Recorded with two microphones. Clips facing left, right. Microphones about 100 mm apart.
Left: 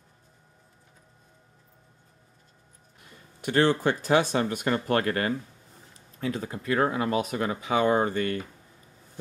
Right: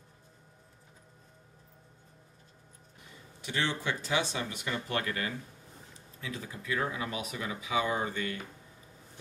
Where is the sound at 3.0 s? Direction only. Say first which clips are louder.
Left 7 dB; 55° left (ahead or behind).